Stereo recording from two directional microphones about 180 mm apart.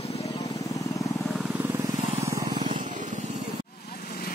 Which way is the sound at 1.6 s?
15° right (ahead or behind).